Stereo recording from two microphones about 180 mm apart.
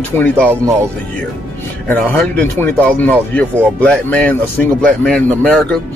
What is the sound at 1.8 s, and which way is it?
Speech, 10° left (ahead or behind).